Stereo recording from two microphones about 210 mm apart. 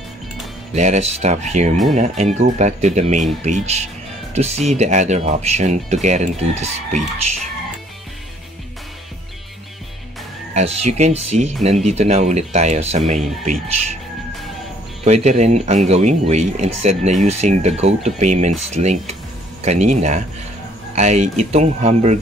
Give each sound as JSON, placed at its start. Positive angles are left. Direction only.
{"t": 0.7, "sound": "speech", "side_deg": -35}
{"t": 10.5, "sound": "speech", "side_deg": -30}
{"t": 15.0, "sound": "speech", "side_deg": -30}